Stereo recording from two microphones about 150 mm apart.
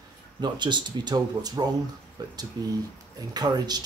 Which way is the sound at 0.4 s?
30° right (ahead or behind).